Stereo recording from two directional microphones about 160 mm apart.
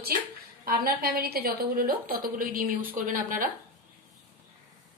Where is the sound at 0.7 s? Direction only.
70° right (ahead or behind).